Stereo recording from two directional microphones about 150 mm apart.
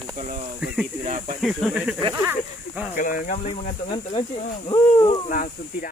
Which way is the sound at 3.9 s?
35° left (ahead or behind).